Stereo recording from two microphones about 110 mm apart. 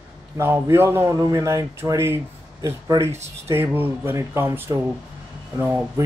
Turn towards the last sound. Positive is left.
turn(degrees=-20)  # may be behind; listen again after turning